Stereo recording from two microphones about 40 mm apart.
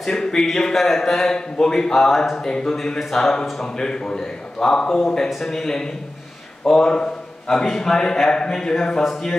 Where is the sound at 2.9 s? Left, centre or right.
Centre.